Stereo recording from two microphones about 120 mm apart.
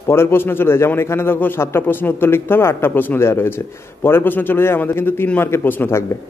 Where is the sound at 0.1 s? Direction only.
20° left (ahead or behind).